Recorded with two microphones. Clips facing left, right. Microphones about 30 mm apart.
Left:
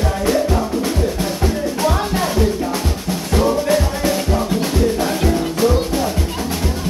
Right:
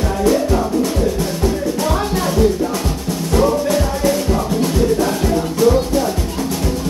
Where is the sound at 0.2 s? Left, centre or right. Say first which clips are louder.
Right 3 dB; centre.